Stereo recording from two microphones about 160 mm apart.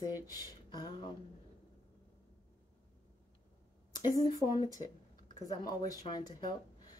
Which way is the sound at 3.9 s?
25° left (ahead or behind).